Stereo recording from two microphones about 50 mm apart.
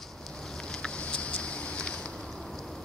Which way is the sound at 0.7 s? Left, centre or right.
Left.